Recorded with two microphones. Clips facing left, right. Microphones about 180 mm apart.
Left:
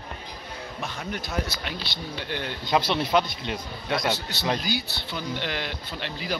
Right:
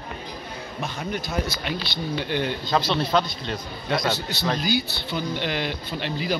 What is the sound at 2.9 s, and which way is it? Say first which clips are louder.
Speech: right 1 dB; 15° left (ahead or behind).